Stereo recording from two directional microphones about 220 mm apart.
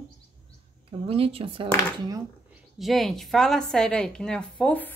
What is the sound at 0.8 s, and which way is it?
Speech, 25° right (ahead or behind).